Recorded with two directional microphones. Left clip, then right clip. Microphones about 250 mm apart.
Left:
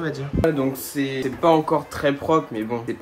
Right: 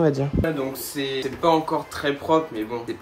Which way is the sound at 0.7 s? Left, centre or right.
Centre.